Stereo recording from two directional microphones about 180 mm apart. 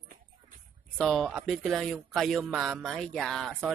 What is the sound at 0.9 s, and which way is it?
Speech, 5° left (ahead or behind).